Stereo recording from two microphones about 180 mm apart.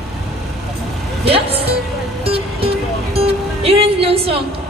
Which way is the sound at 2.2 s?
30° right (ahead or behind).